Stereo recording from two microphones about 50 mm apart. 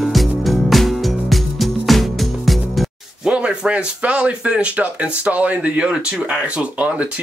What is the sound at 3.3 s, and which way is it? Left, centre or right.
Speech, right.